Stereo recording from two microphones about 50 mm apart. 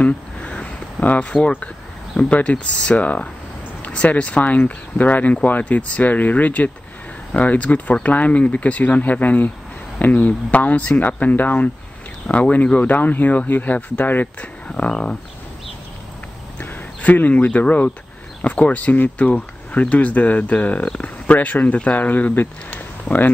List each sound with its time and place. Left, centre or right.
0.0 s a sound: left
1.3 s speech: centre
2.1 s speech: left
16.5 s speech: left